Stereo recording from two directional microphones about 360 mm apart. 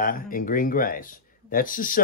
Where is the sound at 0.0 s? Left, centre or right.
Left.